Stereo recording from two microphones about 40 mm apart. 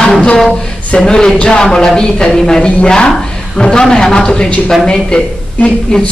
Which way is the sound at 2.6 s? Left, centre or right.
Left.